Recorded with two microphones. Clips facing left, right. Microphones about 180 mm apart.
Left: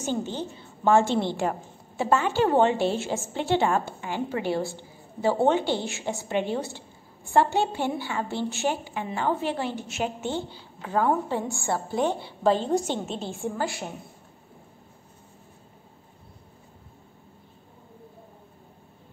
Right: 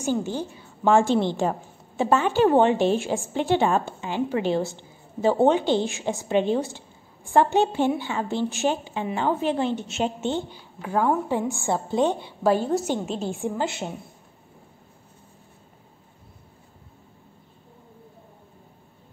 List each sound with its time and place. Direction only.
0.0 s a woman's voice: 10° right (ahead or behind)
10.8 s a woman's voice: 10° right (ahead or behind)
13.3 s a woman's voice: 20° right (ahead or behind)